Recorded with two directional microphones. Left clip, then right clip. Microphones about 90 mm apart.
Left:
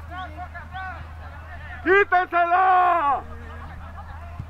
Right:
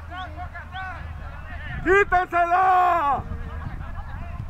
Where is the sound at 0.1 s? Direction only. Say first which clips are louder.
Even; 15° right (ahead or behind).